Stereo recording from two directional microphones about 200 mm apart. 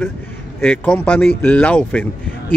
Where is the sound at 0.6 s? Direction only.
10° left (ahead or behind).